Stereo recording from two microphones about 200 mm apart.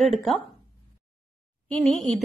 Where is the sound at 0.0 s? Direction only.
Centre (ahead or behind).